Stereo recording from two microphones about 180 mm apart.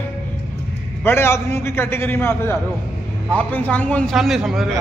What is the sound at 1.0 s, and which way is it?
A man's voice, 15° left (ahead or behind).